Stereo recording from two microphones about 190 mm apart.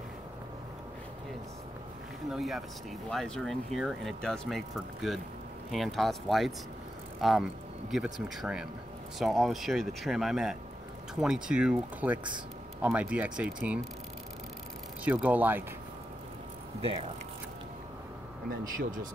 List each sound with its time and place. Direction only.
2.3 s speech: centre (ahead or behind)
15.0 s speech: 10° right (ahead or behind)
16.8 s speech: 30° right (ahead or behind)